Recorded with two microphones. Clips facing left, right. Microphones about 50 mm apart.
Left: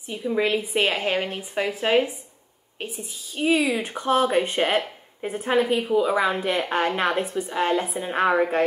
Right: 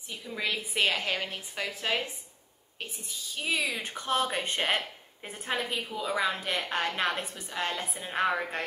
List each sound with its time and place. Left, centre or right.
0.1 s a woman's voice: left